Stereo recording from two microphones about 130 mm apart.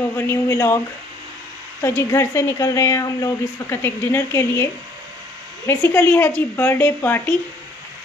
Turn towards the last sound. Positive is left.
turn(degrees=15)  # may be behind; listen again after turning